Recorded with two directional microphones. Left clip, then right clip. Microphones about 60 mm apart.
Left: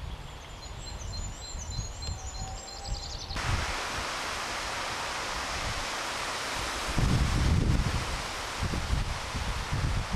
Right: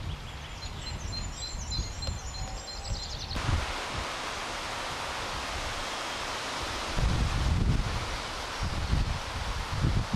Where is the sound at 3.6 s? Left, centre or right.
Left.